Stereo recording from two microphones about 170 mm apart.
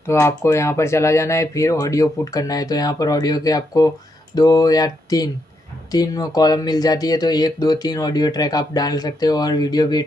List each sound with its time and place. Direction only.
0.0 s speech: 15° left (ahead or behind)